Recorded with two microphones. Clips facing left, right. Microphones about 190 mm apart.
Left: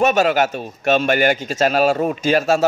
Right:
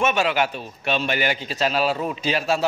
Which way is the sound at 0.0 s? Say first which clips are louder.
Left 5 dB; 40° left (ahead or behind).